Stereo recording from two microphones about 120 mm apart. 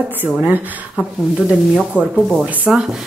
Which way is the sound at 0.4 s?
15° right (ahead or behind).